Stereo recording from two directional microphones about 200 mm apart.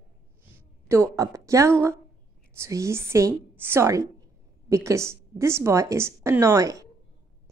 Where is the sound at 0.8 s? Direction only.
15° right (ahead or behind).